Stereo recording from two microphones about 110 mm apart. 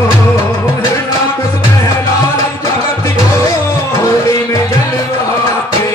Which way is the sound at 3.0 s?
25° left (ahead or behind).